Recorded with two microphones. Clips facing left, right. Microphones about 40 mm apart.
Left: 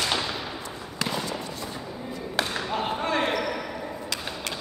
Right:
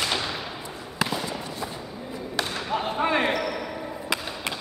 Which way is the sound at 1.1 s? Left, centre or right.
Centre.